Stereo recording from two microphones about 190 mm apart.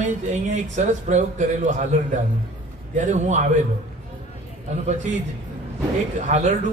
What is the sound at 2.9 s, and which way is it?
Speech, 40° right (ahead or behind).